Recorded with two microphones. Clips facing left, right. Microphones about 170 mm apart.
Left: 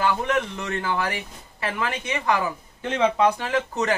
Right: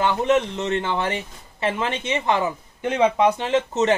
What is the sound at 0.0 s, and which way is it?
A man's voice, 25° right (ahead or behind).